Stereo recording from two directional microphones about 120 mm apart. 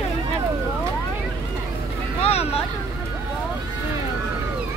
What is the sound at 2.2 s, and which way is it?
Vehicle, 55° left (ahead or behind).